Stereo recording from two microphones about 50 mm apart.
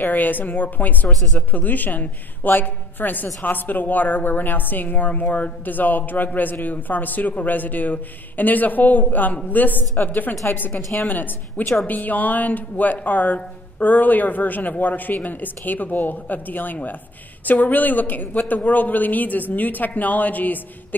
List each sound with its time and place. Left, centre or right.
0.0 s a woman's voice: left